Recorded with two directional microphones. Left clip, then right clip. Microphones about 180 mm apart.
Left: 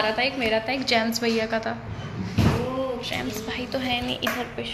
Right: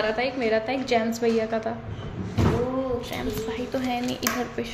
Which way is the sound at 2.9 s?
10° right (ahead or behind).